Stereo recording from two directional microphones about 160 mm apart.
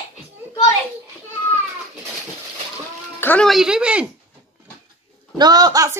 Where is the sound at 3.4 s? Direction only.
5° right (ahead or behind).